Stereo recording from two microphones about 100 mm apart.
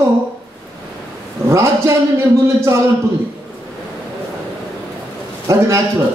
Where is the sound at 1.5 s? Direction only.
30° right (ahead or behind).